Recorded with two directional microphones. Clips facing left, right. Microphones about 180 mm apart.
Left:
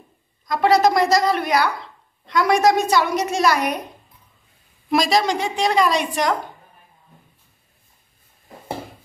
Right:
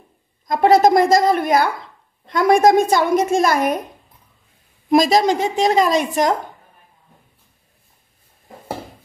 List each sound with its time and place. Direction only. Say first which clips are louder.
0.5 s speech: right 4 dB; 50° right (ahead or behind)
4.8 s speech: right 4 dB; 45° right (ahead or behind)